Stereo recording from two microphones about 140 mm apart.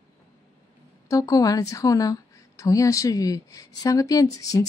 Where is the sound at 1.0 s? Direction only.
25° left (ahead or behind).